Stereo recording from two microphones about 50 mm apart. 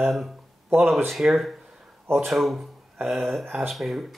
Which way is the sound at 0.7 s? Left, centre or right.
Right.